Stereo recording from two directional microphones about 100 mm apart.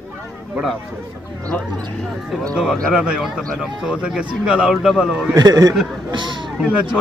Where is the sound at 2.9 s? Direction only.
10° right (ahead or behind).